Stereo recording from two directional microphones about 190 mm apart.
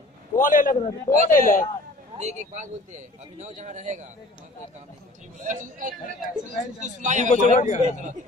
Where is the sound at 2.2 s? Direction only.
35° right (ahead or behind).